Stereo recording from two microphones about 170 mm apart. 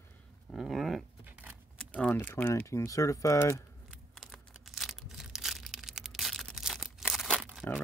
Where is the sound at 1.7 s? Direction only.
10° left (ahead or behind).